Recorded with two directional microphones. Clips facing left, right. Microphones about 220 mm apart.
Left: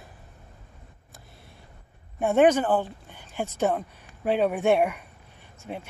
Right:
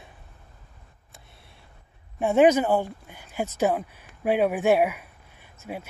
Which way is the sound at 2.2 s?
5° right (ahead or behind).